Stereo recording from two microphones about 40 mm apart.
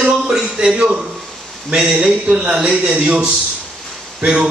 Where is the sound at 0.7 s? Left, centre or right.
Centre.